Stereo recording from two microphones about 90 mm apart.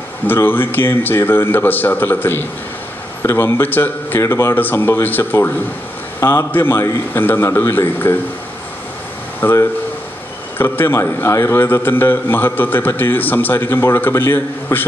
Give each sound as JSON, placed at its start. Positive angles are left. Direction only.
{"t": 0.3, "sound": "a man's voice", "side_deg": 25}
{"t": 9.4, "sound": "a man's voice", "side_deg": 30}